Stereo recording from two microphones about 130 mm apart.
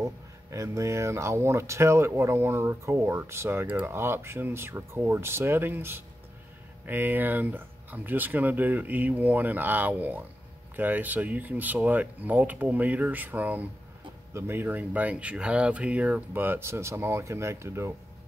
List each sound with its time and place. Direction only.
0.0 s speech: 25° right (ahead or behind)